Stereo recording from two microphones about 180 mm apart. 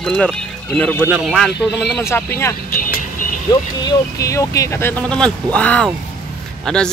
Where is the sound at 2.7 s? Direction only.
50° left (ahead or behind).